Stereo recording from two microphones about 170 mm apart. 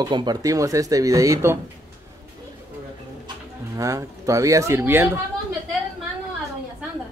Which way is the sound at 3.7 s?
20° right (ahead or behind).